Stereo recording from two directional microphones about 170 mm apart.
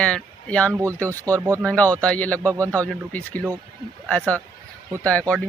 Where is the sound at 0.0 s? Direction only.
5° left (ahead or behind).